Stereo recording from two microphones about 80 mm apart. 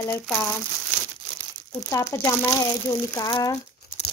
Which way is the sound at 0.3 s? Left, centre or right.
Centre.